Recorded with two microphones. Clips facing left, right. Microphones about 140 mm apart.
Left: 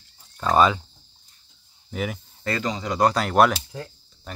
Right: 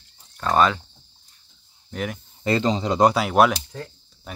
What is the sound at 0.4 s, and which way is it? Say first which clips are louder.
Speech: left 1 dB; 5° left (ahead or behind).